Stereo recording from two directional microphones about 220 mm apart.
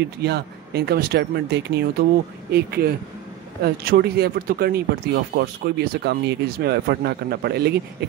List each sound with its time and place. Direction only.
0.2 s speech: 45° right (ahead or behind)